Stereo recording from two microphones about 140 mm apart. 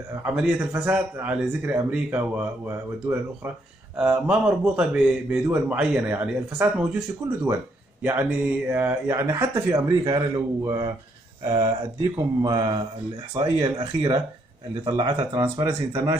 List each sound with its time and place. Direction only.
0.2 s speech: 10° right (ahead or behind)
7.2 s speech: 15° right (ahead or behind)
15.4 s speech: 15° right (ahead or behind)